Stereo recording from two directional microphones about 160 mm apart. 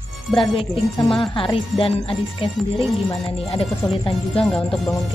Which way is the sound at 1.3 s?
35° left (ahead or behind).